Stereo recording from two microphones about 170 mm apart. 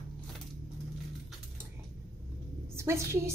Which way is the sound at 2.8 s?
15° right (ahead or behind).